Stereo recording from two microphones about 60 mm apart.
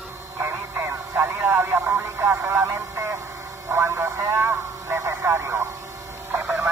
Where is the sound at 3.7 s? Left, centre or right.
Right.